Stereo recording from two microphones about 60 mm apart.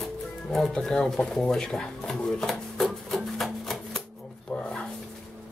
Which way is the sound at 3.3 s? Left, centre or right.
Centre.